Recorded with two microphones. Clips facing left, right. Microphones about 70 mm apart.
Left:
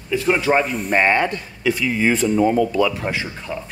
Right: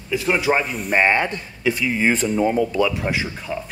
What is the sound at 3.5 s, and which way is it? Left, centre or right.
Speech, centre.